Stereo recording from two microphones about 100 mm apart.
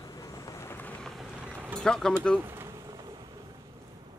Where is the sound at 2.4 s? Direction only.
25° right (ahead or behind).